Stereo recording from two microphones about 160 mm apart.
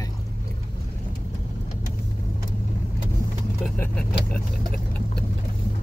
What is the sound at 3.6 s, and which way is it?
Vehicle, 10° left (ahead or behind).